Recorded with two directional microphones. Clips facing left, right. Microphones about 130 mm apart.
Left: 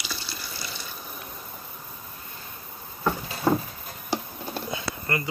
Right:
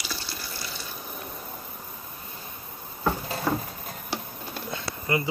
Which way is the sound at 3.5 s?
25° left (ahead or behind).